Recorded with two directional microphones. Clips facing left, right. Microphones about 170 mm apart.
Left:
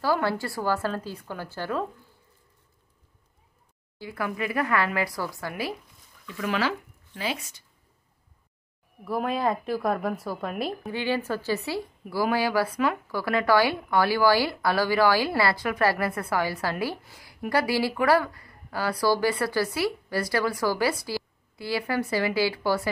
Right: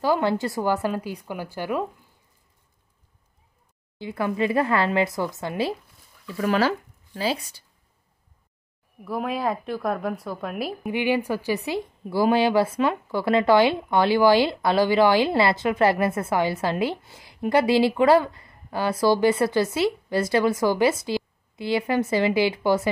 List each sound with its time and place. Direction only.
0.0 s speech: 20° right (ahead or behind)
4.0 s speech: 25° right (ahead or behind)
6.2 s speech: 35° right (ahead or behind)
9.0 s a woman's voice: centre (ahead or behind)
10.8 s speech: 15° right (ahead or behind)